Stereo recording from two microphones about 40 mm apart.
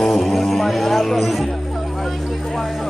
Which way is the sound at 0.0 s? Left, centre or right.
Centre.